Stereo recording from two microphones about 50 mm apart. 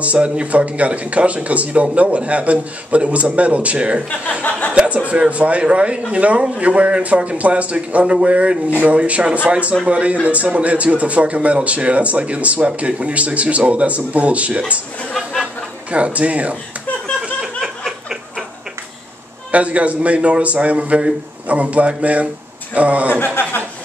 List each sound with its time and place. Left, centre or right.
0.0 s speech: right
4.4 s speech: left
4.7 s speech: right
15.9 s speech: right
19.5 s speech: right
23.1 s speech: left